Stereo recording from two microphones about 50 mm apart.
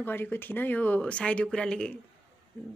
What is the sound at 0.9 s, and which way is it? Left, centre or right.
A woman's voice, left.